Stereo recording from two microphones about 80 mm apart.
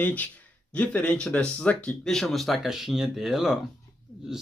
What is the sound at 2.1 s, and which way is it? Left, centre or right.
Speech, centre.